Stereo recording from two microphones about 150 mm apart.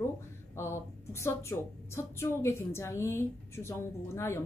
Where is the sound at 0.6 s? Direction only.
15° left (ahead or behind).